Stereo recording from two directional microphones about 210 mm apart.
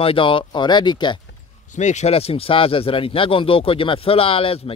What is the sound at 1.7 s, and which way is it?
Speech, 35° left (ahead or behind).